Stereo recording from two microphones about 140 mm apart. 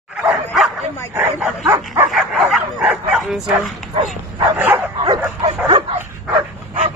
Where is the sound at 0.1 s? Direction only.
10° right (ahead or behind).